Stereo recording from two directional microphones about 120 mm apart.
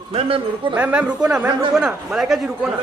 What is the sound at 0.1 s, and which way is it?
Speech, 50° right (ahead or behind).